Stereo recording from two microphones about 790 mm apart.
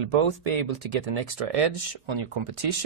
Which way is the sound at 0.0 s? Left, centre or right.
Right.